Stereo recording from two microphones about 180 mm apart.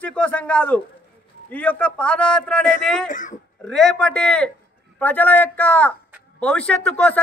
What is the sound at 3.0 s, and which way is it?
Speech, 45° left (ahead or behind).